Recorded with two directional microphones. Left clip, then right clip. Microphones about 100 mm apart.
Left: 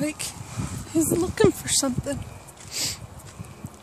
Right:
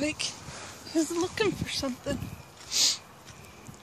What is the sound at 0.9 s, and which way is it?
Speech, 80° left.